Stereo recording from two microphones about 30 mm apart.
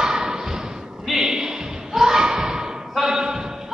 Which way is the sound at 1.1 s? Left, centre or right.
Right.